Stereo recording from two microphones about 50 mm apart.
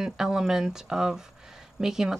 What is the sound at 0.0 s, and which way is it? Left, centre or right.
Speech, centre.